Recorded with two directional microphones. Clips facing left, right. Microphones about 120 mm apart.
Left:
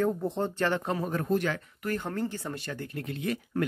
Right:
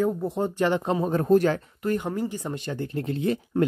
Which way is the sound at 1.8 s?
15° right (ahead or behind).